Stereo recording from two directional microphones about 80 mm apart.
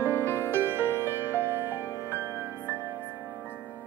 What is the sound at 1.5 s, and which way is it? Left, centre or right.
Music, right.